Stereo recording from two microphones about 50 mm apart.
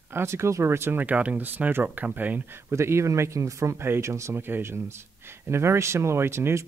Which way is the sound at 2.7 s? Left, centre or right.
Right.